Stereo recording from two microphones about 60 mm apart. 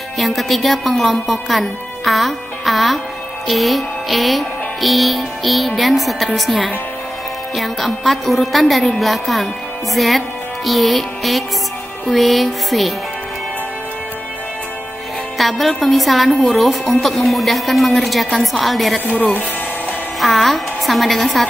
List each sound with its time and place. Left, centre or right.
0.2 s a woman's voice: centre
3.4 s music: centre
5.8 s a woman's voice: centre
15.3 s a woman's voice: centre
19.0 s speech: left
20.2 s a woman's voice: centre